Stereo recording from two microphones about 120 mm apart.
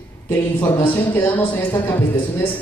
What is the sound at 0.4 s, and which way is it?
Speech, 20° left (ahead or behind).